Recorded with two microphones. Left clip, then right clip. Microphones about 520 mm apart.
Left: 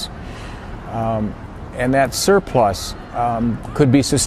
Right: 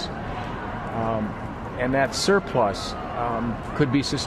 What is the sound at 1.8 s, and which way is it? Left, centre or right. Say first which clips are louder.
Speech: left 6 dB; left.